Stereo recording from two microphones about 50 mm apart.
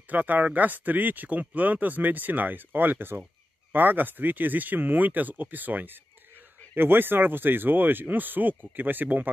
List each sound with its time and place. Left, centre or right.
0.1 s speech: right